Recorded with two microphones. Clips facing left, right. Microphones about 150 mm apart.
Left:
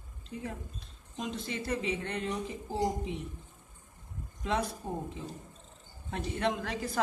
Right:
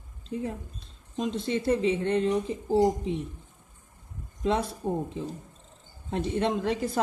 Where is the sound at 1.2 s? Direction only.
30° right (ahead or behind).